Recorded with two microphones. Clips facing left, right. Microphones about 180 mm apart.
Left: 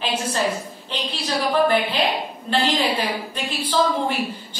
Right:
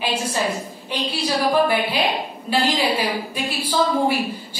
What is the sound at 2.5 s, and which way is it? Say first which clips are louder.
A woman's voice: right 1 dB; 10° right (ahead or behind).